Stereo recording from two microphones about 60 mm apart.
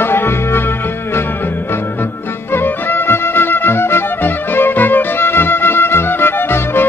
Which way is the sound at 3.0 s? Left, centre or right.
Left.